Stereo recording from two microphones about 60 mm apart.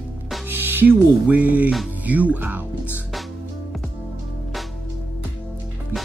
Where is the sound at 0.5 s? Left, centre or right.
Right.